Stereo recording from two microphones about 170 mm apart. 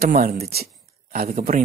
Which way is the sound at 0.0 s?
65° right (ahead or behind).